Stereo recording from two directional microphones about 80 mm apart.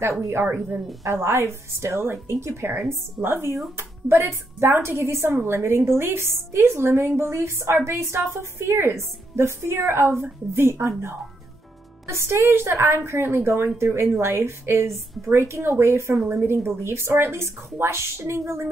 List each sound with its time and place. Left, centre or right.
0.3 s a woman's voice: right